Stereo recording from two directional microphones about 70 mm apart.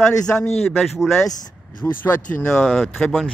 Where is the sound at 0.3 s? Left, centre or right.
Centre.